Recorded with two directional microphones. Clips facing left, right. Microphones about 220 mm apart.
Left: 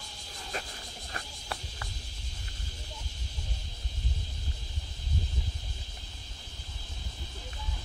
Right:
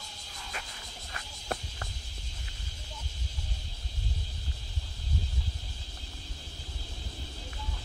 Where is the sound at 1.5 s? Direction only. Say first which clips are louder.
Right 5 dB; 45° right (ahead or behind).